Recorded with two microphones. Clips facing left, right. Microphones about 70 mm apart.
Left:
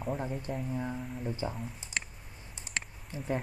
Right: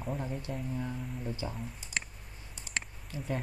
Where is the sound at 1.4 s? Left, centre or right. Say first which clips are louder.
Left 5 dB; centre.